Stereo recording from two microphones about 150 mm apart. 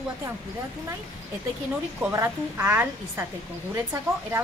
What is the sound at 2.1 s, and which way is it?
Speech, 15° right (ahead or behind).